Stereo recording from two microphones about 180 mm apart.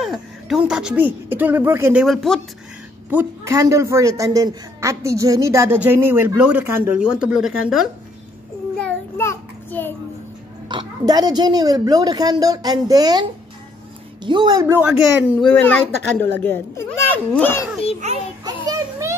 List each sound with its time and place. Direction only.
0.0 s speech: centre (ahead or behind)
2.0 s speech: centre (ahead or behind)
3.1 s a man's voice: 10° right (ahead or behind)
8.7 s a sound: 10° left (ahead or behind)
10.7 s speech: 25° right (ahead or behind)
15.6 s speech: 10° left (ahead or behind)
18.4 s a sound: 20° right (ahead or behind)